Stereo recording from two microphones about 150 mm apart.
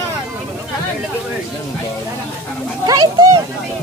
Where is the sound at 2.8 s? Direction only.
25° right (ahead or behind).